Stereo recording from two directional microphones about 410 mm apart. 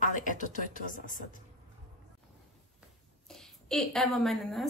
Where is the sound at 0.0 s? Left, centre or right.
Centre.